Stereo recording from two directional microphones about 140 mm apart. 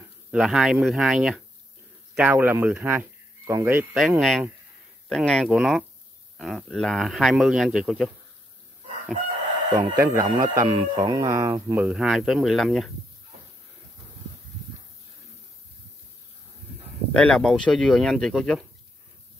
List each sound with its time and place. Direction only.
0.3 s a man's voice: 5° right (ahead or behind)
3.9 s a man's voice: 5° right (ahead or behind)
10.0 s speech: 30° right (ahead or behind)
11.9 s a man's voice: centre (ahead or behind)
17.1 s a man's voice: 5° left (ahead or behind)